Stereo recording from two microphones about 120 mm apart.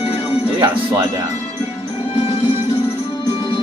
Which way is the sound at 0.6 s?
30° right (ahead or behind).